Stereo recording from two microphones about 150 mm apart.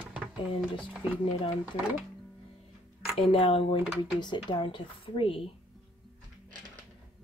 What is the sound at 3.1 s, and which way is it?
Speech, 35° left (ahead or behind).